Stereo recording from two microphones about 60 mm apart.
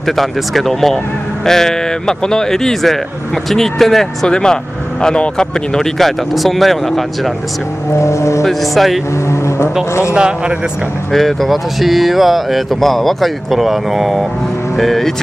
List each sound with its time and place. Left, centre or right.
0.0 s speech: centre
7.9 s speech: left
8.5 s speech: centre
11.1 s speech: centre